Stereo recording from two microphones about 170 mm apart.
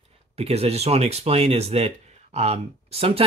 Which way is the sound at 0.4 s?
35° right (ahead or behind).